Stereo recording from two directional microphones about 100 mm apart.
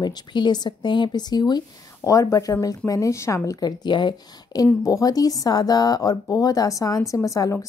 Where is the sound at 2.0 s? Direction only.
35° left (ahead or behind).